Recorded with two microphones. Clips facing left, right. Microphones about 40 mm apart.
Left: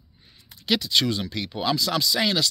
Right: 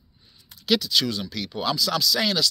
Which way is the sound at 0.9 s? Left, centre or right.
Left.